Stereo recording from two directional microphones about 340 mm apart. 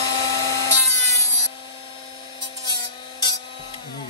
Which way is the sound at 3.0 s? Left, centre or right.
Centre.